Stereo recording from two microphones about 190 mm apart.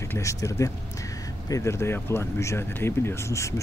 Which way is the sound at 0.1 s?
15° left (ahead or behind).